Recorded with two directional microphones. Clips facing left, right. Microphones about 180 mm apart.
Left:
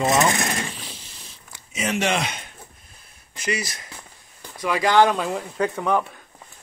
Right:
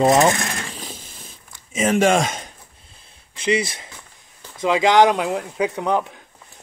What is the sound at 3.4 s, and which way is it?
Speech, 25° right (ahead or behind).